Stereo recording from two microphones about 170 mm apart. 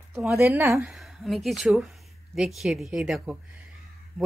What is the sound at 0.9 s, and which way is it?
A woman's voice, centre (ahead or behind).